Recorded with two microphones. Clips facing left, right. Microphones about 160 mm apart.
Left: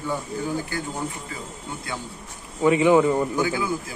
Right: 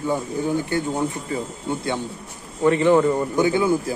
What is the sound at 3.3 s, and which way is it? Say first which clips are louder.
Speech: right 6 dB; 25° right (ahead or behind).